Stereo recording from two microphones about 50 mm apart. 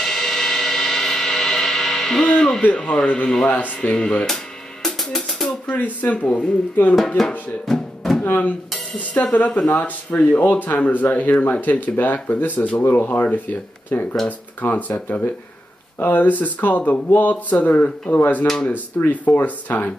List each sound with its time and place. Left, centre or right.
0.0 s a sound: centre
2.2 s speech: centre
3.4 s speech: left
4.8 s music: centre
5.7 s speech: left
7.2 s music: centre
8.4 s dishes: left
9.7 s speech: left
12.5 s speech: left
12.8 s speech: left